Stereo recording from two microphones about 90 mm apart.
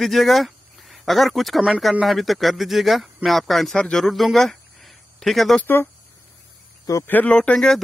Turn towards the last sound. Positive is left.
turn(degrees=10)  # may be behind; listen again after turning